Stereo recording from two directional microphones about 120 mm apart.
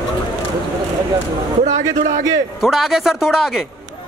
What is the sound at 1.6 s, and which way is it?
Speech, 90° right.